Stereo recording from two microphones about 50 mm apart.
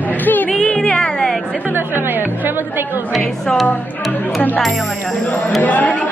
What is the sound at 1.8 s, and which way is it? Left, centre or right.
Speech, right.